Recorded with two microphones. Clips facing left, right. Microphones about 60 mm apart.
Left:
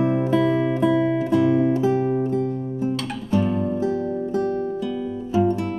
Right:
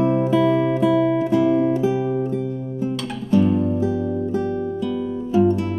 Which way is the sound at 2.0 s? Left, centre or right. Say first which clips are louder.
Even; left.